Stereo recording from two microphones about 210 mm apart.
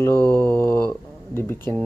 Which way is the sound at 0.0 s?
10° left (ahead or behind).